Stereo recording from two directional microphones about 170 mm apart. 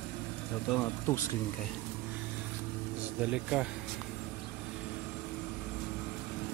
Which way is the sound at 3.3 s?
5° right (ahead or behind).